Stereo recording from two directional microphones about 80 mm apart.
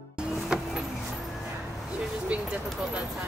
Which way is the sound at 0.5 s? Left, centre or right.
Centre.